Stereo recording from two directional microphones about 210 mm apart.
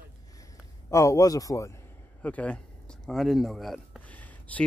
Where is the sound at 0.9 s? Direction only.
15° left (ahead or behind).